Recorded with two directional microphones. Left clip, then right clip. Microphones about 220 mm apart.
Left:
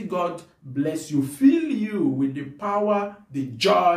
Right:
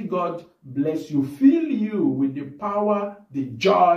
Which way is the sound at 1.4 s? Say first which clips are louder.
Right 1 dB; 15° left (ahead or behind).